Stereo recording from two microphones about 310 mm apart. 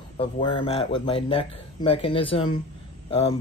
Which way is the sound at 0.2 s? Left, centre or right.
Centre.